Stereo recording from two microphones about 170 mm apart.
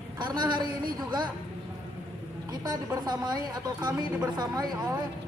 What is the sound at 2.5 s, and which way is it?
A woman's voice, 20° right (ahead or behind).